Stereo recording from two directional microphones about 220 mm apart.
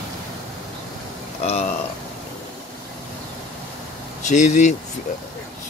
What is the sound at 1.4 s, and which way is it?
Speech, 30° left (ahead or behind).